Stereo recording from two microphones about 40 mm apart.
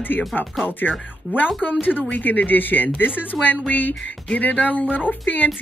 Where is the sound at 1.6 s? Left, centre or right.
Left.